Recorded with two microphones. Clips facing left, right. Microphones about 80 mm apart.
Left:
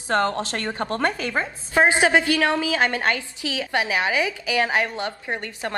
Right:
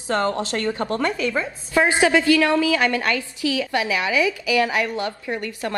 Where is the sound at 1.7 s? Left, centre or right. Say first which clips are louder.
Even; left.